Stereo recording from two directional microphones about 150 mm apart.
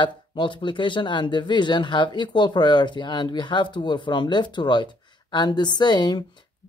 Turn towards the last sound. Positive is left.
turn(degrees=30)  # may be behind; listen again after turning